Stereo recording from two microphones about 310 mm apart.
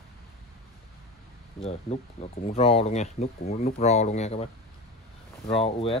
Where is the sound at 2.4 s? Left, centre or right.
Centre.